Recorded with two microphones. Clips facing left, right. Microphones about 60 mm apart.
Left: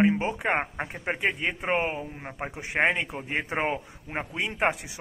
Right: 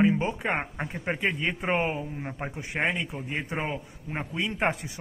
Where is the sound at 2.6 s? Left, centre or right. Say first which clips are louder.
Left 4 dB; left; by 4.8 s centre.